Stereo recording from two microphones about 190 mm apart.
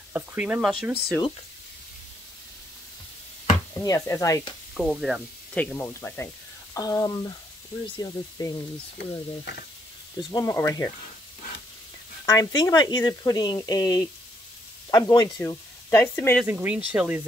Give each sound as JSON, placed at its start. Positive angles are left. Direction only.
{"t": 0.1, "sound": "speech", "side_deg": -10}
{"t": 3.7, "sound": "speech", "side_deg": 15}
{"t": 4.7, "sound": "speech", "side_deg": 0}
{"t": 10.3, "sound": "speech", "side_deg": 15}
{"t": 12.3, "sound": "speech", "side_deg": 20}
{"t": 16.4, "sound": "speech", "side_deg": -5}